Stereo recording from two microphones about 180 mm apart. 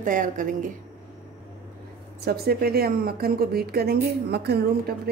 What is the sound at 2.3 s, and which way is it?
A woman's voice, 60° right (ahead or behind).